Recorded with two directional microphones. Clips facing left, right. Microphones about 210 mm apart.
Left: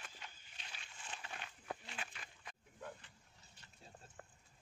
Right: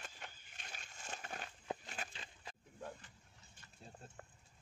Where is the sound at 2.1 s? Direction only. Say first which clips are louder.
Right 2 dB; 30° right (ahead or behind).